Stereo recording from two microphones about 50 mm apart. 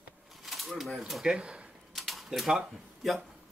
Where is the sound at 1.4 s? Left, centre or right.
Right.